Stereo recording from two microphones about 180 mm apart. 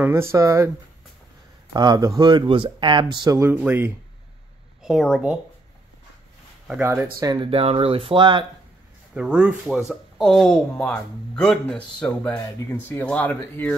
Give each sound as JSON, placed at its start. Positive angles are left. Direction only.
{"t": 0.0, "sound": "speech", "side_deg": -15}
{"t": 1.7, "sound": "speech", "side_deg": -20}
{"t": 4.8, "sound": "speech", "side_deg": 0}
{"t": 6.8, "sound": "speech", "side_deg": -15}
{"t": 9.1, "sound": "speech", "side_deg": -5}